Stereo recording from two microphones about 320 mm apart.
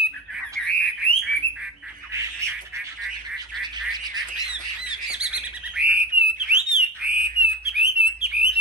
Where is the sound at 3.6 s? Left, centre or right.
Centre.